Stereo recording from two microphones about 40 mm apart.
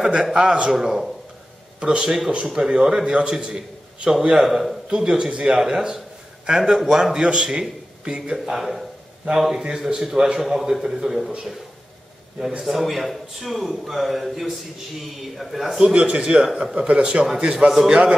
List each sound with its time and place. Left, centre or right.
0.2 s a man's voice: right
0.7 s a man's voice: centre
1.8 s a man's voice: right
7.2 s a man's voice: right
8.5 s a man's voice: centre
12.4 s a man's voice: centre
12.6 s a man's voice: centre
15.9 s a man's voice: right
16.8 s a man's voice: right